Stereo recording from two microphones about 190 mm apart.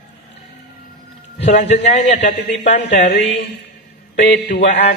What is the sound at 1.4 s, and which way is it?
A man's voice, 65° left (ahead or behind).